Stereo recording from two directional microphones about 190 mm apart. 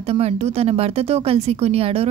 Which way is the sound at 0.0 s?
30° right (ahead or behind).